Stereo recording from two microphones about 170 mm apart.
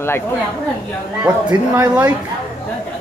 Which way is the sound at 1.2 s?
10° right (ahead or behind).